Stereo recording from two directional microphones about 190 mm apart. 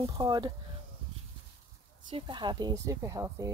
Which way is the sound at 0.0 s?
20° right (ahead or behind).